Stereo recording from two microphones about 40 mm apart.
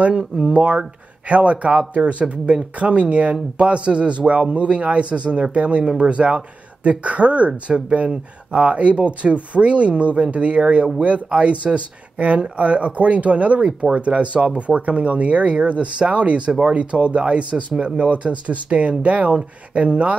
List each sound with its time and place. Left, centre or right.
0.5 s a man's voice: right